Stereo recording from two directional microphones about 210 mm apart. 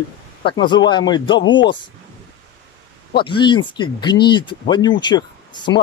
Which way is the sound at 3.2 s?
20° left (ahead or behind).